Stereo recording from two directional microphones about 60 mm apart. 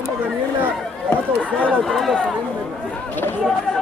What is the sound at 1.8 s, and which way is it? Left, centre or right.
Run, centre.